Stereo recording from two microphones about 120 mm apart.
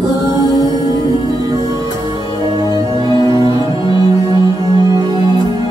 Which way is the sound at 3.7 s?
45° left (ahead or behind).